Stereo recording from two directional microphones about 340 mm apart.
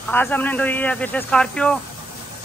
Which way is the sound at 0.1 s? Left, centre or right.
Centre.